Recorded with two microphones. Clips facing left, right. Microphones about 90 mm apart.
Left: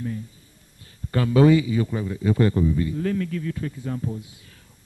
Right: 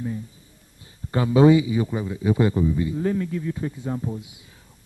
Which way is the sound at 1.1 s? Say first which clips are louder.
Right 1 dB; 20° right (ahead or behind).